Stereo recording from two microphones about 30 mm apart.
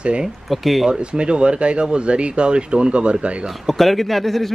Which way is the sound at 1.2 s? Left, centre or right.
Right.